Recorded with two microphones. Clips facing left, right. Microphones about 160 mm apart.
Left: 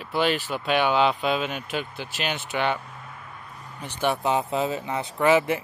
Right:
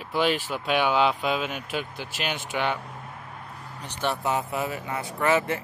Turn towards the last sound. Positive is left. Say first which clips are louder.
# left 3 dB
turn(degrees=15)  # may be behind; listen again after turning